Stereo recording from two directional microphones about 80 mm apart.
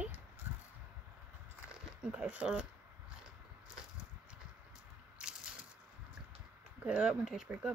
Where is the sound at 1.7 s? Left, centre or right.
Centre.